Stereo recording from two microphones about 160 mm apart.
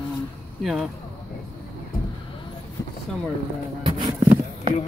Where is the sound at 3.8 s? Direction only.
30° right (ahead or behind).